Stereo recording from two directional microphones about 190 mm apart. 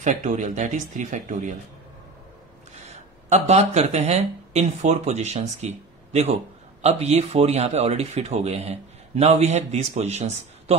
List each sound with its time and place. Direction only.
0.0 s speech: 40° right (ahead or behind)
2.8 s speech: 35° right (ahead or behind)